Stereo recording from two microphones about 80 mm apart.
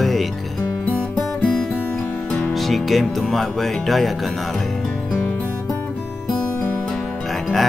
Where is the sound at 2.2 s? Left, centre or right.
Centre.